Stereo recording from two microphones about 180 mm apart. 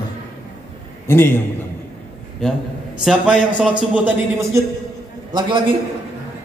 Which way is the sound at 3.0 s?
5° right (ahead or behind).